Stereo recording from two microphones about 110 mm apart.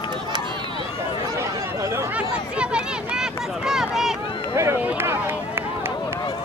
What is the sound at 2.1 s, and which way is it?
Speech, 10° right (ahead or behind).